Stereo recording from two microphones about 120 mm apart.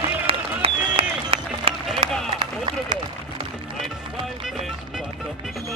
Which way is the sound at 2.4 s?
35° right (ahead or behind).